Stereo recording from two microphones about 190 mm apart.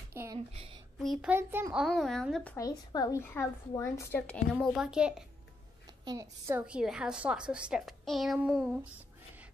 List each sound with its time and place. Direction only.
0.1 s a sound: 15° right (ahead or behind)
0.5 s speech: 30° right (ahead or behind)
0.9 s a woman's voice: centre (ahead or behind)
1.3 s a woman's voice: 10° right (ahead or behind)
2.5 s a woman's voice: 20° left (ahead or behind)
4.6 s a woman's voice: 5° right (ahead or behind)
6.0 s a woman's voice: 15° right (ahead or behind)
6.6 s a woman's voice: 5° right (ahead or behind)